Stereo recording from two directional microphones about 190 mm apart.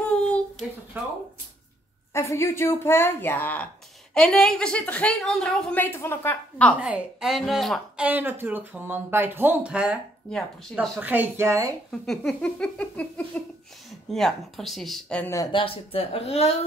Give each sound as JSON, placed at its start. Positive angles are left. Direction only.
{"t": 0.0, "sound": "a sound", "side_deg": 5}
{"t": 2.1, "sound": "a woman's voice", "side_deg": 15}
{"t": 6.8, "sound": "speech", "side_deg": -5}
{"t": 11.9, "sound": "a sound", "side_deg": 0}
{"t": 15.3, "sound": "speech", "side_deg": 20}
{"t": 15.6, "sound": "speech", "side_deg": 30}